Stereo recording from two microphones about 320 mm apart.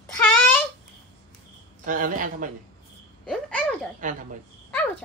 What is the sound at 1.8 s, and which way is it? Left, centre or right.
Speech, right.